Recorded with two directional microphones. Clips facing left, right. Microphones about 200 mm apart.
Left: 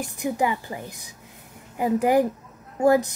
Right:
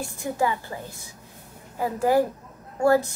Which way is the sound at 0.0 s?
15° left (ahead or behind).